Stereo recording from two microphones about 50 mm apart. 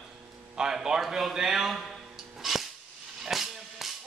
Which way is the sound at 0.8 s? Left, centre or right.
Centre.